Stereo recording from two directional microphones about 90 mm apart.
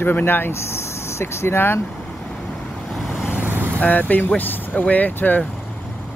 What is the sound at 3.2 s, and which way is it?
Vehicle, 20° right (ahead or behind).